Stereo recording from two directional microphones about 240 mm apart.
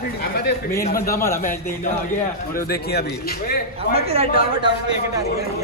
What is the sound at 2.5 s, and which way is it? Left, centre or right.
A man's voice, left.